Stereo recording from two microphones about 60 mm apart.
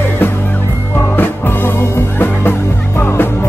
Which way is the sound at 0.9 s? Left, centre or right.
Left.